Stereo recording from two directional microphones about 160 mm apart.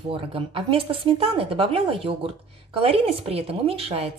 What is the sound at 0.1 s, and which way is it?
A woman's voice, 35° right (ahead or behind).